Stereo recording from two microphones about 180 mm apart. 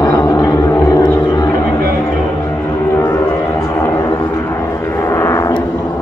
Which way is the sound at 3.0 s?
15° left (ahead or behind).